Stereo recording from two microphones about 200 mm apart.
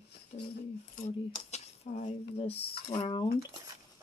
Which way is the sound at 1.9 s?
35° left (ahead or behind).